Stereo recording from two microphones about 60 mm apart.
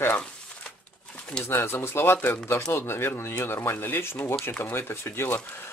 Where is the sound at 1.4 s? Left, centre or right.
Left.